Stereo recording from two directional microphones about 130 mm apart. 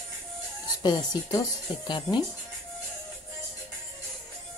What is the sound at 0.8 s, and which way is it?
Speech, 35° left (ahead or behind).